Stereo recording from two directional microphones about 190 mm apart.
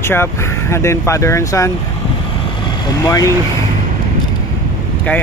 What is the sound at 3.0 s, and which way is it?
Speech, 15° left (ahead or behind).